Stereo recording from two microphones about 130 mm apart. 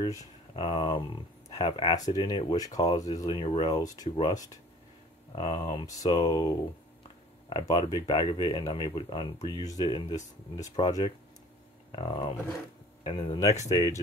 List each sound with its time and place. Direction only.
0.1 s a sound: 30° left (ahead or behind)
0.7 s speech: 40° left (ahead or behind)
2.0 s speech: 30° left (ahead or behind)
7.6 s speech: 35° left (ahead or behind)
13.7 s speech: 30° left (ahead or behind)